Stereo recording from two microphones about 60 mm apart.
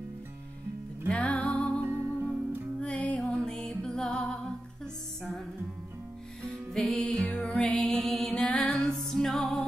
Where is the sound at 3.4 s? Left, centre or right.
Centre.